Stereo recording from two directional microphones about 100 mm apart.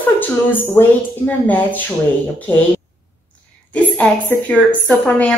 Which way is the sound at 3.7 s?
15° left (ahead or behind).